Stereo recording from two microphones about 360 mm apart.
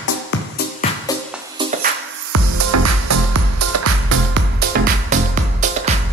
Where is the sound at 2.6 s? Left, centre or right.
Right.